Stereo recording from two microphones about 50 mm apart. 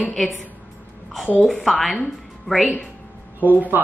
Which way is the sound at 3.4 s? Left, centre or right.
Right.